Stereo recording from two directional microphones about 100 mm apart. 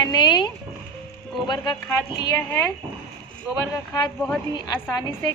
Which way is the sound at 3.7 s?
45° left (ahead or behind).